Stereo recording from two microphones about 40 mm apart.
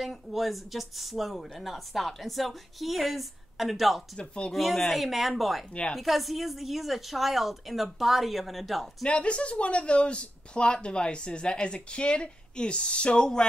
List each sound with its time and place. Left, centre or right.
0.0 s speech: centre
5.7 s speech: left
5.9 s speech: centre
9.0 s speech: left